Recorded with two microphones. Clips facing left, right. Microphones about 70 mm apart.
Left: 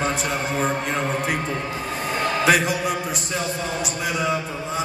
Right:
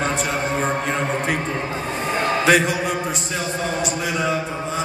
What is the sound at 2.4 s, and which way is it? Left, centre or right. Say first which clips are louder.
A man's voice: right 1 dB; centre.